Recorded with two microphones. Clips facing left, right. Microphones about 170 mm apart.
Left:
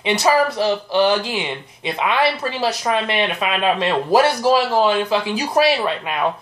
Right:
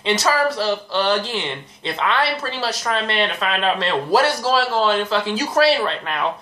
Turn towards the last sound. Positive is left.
turn(degrees=10)  # may be behind; listen again after turning